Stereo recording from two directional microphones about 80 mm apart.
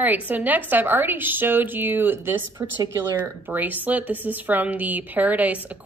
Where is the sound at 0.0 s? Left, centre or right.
Right.